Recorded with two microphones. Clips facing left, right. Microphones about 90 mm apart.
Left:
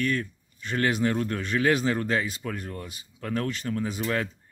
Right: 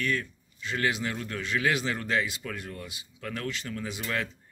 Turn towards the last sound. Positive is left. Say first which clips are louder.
# left 5 dB
turn(degrees=35)  # may be behind; listen again after turning